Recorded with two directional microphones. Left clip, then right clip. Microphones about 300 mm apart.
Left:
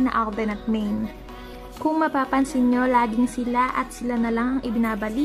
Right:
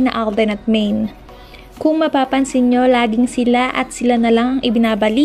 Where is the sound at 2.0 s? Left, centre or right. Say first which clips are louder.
Right 4 dB; centre.